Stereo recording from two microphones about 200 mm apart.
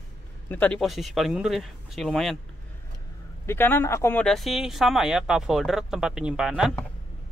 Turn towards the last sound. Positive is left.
turn(degrees=-5)  # may be behind; listen again after turning